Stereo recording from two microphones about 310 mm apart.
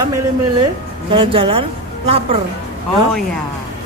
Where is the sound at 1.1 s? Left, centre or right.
Centre.